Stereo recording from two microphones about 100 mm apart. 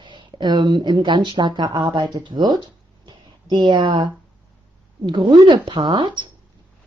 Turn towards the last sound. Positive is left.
turn(degrees=-50)  # may be behind; listen again after turning